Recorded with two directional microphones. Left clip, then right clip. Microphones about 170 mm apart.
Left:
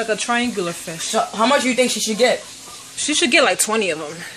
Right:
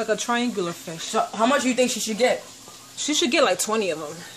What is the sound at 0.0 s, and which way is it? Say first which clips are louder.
Speech: left 4 dB; 5° right (ahead or behind).